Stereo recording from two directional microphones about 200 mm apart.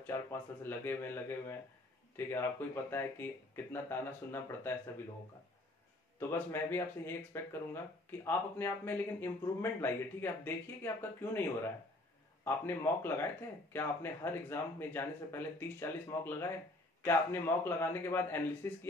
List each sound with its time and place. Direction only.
0.0 s speech: 10° left (ahead or behind)
6.1 s speech: 10° left (ahead or behind)